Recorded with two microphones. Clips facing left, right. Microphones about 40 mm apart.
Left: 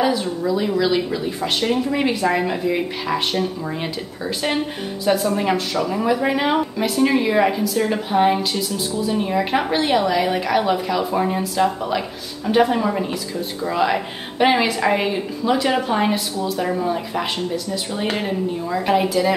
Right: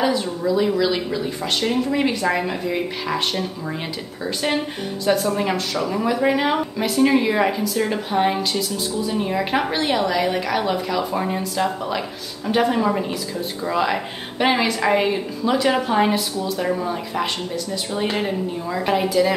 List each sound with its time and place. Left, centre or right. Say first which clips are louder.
0.0 s a woman's voice: left 1 dB; centre